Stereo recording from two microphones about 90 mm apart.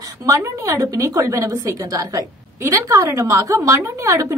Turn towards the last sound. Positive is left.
turn(degrees=-35)  # may be behind; listen again after turning